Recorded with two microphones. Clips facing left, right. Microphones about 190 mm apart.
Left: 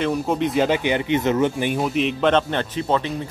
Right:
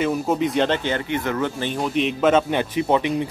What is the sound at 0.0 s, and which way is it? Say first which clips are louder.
Speech: even; centre (ahead or behind).